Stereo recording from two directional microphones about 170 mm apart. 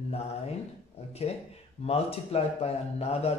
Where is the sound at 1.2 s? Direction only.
40° left (ahead or behind).